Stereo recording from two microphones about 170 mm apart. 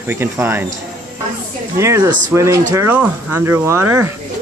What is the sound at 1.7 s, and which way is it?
Speech, 15° right (ahead or behind).